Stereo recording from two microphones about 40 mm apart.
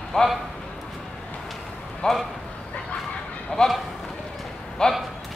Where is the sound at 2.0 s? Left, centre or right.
Left.